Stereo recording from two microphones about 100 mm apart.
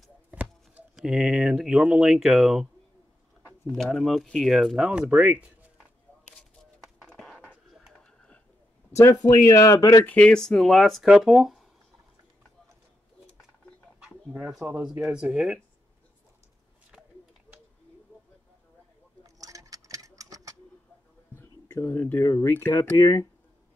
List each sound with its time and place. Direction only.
0.3 s chopping: 15° right (ahead or behind)
0.9 s speech: 5° right (ahead or behind)
3.7 s speech: 5° left (ahead or behind)
4.8 s speech: 15° right (ahead or behind)
6.6 s a sound: 5° left (ahead or behind)
9.2 s speech: 30° left (ahead or behind)
10.0 s speech: 15° left (ahead or behind)
13.9 s a sound: 10° right (ahead or behind)
14.8 s speech: 5° right (ahead or behind)
19.4 s clock: 35° right (ahead or behind)
21.4 s speech: 30° left (ahead or behind)